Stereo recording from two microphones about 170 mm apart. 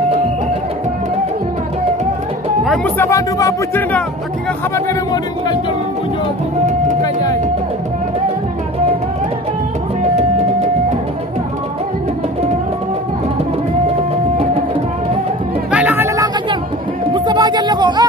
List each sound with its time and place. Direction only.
2.6 s music: centre (ahead or behind)
3.0 s a man's voice: 20° left (ahead or behind)
10.1 s music: 40° right (ahead or behind)
15.7 s a sound: 10° right (ahead or behind)
17.1 s music: 25° right (ahead or behind)